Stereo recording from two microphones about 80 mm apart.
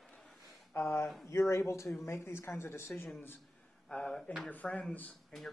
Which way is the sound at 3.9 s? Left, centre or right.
Centre.